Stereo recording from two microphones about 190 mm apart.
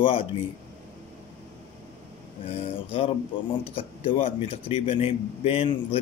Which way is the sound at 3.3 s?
25° left (ahead or behind).